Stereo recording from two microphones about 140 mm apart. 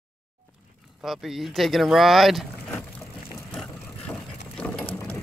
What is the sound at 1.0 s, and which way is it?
Speech, centre (ahead or behind).